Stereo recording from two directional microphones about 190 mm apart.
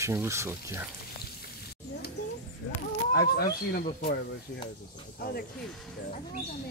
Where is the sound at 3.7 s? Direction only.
50° left (ahead or behind).